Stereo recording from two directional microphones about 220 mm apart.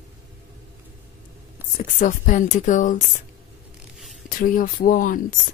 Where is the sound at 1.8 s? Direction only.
35° left (ahead or behind).